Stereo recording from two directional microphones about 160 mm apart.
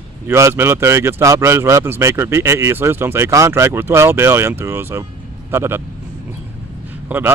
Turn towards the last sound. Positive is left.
turn(degrees=-10)  # may be behind; listen again after turning